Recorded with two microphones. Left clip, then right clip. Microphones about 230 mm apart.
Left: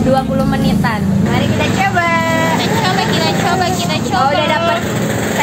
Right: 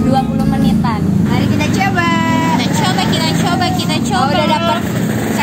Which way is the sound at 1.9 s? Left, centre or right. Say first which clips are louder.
Left 1 dB; right.